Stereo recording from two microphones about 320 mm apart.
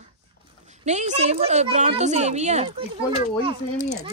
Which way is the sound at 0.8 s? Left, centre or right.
Right.